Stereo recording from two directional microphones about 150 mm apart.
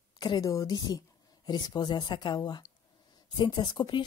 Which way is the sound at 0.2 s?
25° left (ahead or behind).